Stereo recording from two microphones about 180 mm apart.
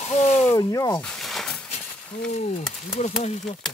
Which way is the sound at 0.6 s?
20° left (ahead or behind).